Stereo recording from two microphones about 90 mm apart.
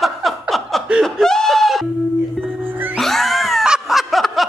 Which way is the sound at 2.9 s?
Centre (ahead or behind).